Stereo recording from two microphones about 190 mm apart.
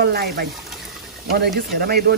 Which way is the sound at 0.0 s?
55° right (ahead or behind).